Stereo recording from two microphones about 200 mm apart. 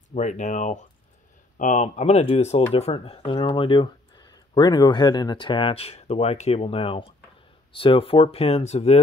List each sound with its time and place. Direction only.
0.1 s speech: 35° left (ahead or behind)